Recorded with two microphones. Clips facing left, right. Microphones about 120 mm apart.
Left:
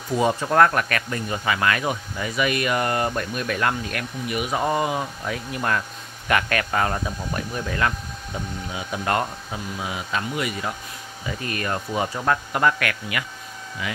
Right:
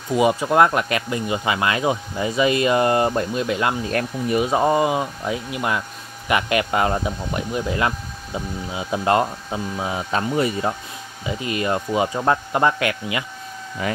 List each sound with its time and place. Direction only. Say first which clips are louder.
0.1 s speech: right 3 dB; 15° right (ahead or behind); by 10.8 s 30° right (ahead or behind)
11.2 s speech: right 5 dB; 15° right (ahead or behind)
13.8 s speech: right 7 dB; 45° right (ahead or behind)